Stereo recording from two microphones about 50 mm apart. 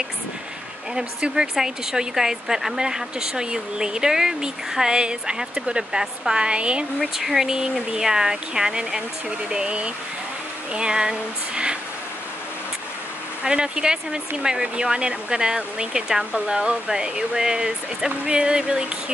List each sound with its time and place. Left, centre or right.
0.9 s speech: centre
7.2 s speech: centre
13.4 s speech: centre